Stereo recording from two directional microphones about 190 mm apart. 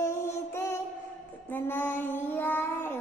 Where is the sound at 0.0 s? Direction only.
15° left (ahead or behind).